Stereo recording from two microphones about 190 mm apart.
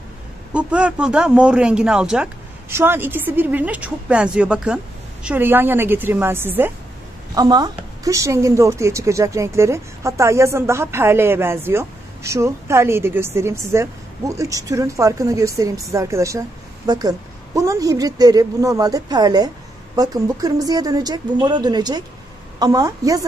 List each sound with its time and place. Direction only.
0.5 s a woman's voice: 5° right (ahead or behind)